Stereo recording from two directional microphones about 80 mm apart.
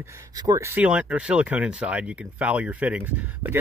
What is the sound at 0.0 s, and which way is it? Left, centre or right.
Speech, right.